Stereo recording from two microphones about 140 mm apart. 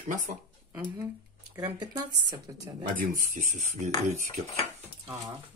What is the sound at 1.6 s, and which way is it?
Speech, 30° right (ahead or behind).